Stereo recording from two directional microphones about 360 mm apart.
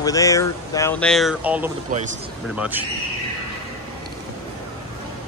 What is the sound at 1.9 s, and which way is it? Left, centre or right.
Speech, centre.